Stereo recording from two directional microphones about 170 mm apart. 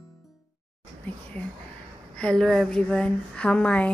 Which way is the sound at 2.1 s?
5° left (ahead or behind).